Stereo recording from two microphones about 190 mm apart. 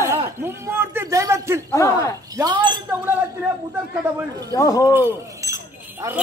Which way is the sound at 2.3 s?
25° right (ahead or behind).